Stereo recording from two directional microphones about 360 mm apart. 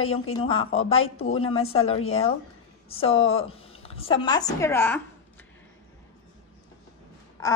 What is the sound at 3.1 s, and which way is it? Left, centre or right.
Speech, left.